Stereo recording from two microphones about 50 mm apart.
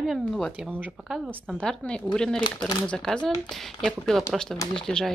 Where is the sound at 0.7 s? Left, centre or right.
Right.